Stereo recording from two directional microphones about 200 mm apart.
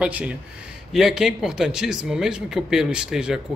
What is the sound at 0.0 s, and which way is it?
Speech, 5° right (ahead or behind).